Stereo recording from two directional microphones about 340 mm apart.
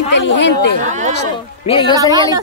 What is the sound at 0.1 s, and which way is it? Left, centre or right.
Speech, left.